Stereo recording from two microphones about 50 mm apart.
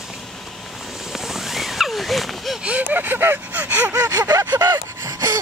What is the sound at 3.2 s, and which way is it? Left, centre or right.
Gasp, right.